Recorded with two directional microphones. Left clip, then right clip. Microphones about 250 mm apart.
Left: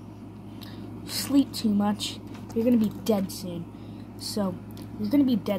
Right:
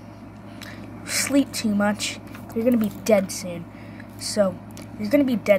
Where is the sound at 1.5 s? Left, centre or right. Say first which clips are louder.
Right 4 dB; centre.